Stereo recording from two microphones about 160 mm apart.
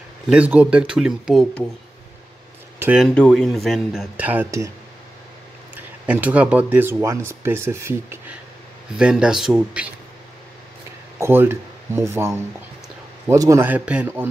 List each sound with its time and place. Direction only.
0.3 s speech: 10° right (ahead or behind)
2.8 s speech: 5° right (ahead or behind)
3.2 s speech: 5° left (ahead or behind); by 4.6 s 15° right (ahead or behind)
5.8 s speech: 10° right (ahead or behind)
8.9 s speech: 5° right (ahead or behind)
11.1 s speech: 15° right (ahead or behind)